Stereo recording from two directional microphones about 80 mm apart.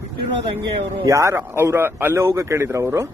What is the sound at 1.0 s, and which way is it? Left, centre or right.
A man's voice, right.